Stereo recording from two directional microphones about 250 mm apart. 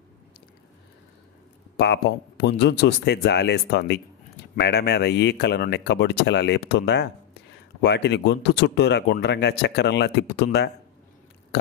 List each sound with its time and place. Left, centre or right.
1.8 s speech: left